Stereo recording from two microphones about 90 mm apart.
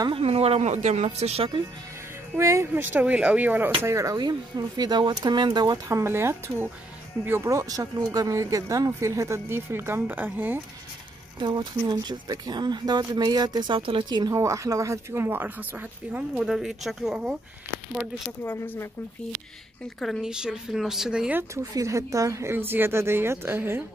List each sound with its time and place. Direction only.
0.1 s speech: 90° right
2.3 s speech: 30° right (ahead or behind)
2.7 s speech: 20° right (ahead or behind)
3.8 s speech: 35° right (ahead or behind)
4.2 s speech: 50° right (ahead or behind)
5.9 s speech: 30° right (ahead or behind)
11.3 s speech: 55° right (ahead or behind)
13.7 s speech: 75° right (ahead or behind); by 14.3 s 55° right (ahead or behind)
14.3 s speech: 35° right (ahead or behind); by 16.3 s 20° right (ahead or behind)
16.3 s speech: 5° right (ahead or behind)
18.4 s speech: 25° left (ahead or behind)
20.2 s speech: 10° right (ahead or behind)
21.7 s speech: 35° right (ahead or behind)